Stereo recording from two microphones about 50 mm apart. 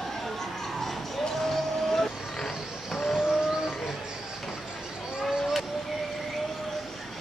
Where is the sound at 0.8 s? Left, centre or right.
Centre.